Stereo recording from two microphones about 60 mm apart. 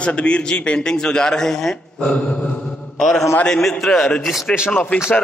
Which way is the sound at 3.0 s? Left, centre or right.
Centre.